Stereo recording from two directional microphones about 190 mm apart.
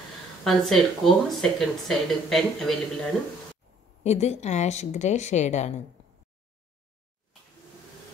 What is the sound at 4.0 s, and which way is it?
Speech, 35° left (ahead or behind).